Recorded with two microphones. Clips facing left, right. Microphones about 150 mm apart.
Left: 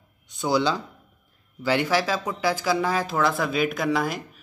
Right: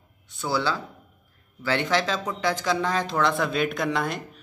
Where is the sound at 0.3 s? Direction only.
20° left (ahead or behind).